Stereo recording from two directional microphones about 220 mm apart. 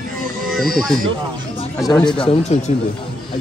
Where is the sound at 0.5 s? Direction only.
Centre (ahead or behind).